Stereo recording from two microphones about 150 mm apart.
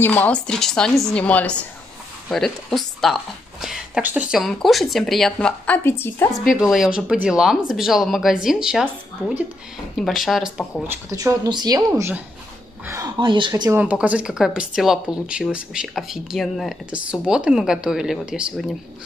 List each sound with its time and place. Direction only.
0.0 s a woman's voice: 10° left (ahead or behind)
6.4 s speech: centre (ahead or behind)
10.8 s speech: 15° right (ahead or behind)
11.9 s speech: 15° right (ahead or behind)
13.2 s speech: 30° right (ahead or behind)
13.7 s speech: 10° right (ahead or behind)